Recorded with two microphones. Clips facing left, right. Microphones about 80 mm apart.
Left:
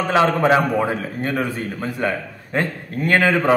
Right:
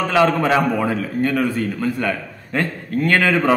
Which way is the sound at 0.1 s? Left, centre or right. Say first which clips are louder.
Left 1 dB; left.